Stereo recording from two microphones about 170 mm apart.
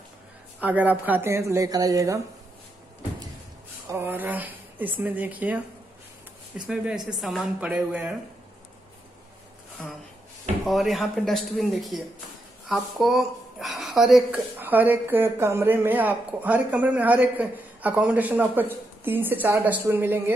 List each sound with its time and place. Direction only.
0.6 s speech: 10° right (ahead or behind)
3.9 s speech: 10° right (ahead or behind)
6.6 s speech: 5° right (ahead or behind)
10.6 s a woman's voice: centre (ahead or behind)